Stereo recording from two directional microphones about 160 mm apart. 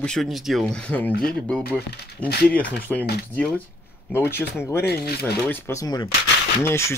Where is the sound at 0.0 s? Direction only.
Centre (ahead or behind).